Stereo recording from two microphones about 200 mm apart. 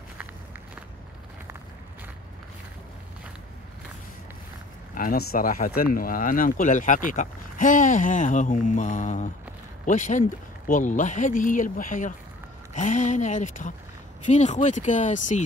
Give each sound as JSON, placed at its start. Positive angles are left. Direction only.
{"t": 4.9, "sound": "speech", "side_deg": 50}